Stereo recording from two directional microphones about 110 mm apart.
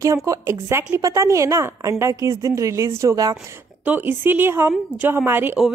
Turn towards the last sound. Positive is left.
turn(degrees=-20)  # may be behind; listen again after turning